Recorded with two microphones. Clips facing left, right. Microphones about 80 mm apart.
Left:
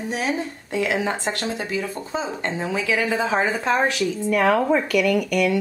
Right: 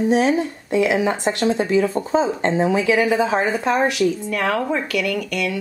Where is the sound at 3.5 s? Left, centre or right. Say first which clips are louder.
Right 2 dB; centre.